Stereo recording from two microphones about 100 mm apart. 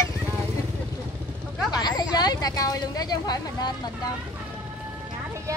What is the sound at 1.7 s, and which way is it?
Speech, 40° left (ahead or behind).